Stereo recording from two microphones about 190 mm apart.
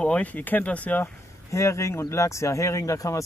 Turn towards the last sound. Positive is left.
turn(degrees=15)  # may be behind; listen again after turning